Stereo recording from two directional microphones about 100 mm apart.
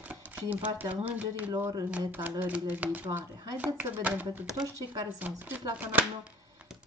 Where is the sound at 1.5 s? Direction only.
35° right (ahead or behind).